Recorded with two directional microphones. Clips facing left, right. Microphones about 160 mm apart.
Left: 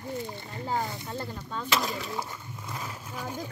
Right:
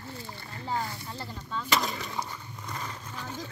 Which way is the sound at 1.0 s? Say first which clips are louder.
Left 3 dB; 50° left (ahead or behind).